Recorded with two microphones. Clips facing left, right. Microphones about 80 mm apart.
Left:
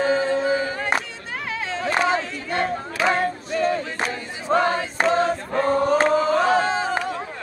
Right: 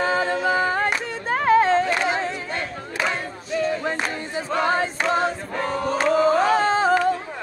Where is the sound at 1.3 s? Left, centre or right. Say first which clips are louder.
Right 12 dB; right.